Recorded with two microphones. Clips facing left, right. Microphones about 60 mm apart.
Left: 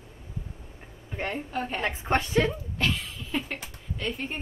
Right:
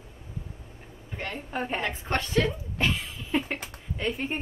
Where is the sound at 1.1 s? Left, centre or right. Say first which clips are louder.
Left 4 dB; centre.